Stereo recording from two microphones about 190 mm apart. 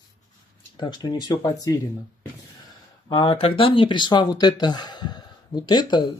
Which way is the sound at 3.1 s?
25° left (ahead or behind).